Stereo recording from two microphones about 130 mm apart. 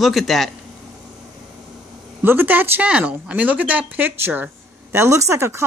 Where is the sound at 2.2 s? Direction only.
15° right (ahead or behind).